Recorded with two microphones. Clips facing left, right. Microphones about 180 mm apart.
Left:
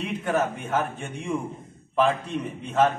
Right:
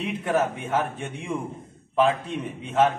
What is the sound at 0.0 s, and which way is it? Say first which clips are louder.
A man's voice: right 1 dB; centre (ahead or behind).